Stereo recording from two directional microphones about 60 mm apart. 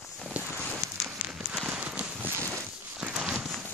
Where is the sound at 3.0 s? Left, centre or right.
Centre.